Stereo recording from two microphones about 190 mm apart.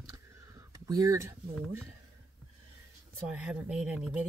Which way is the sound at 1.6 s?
10° right (ahead or behind).